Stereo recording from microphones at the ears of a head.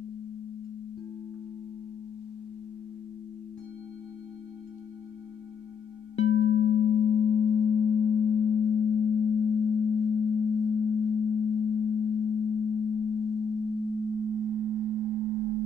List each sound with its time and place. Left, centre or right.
6.1 s singing bowl: left
14.1 s sine wave: right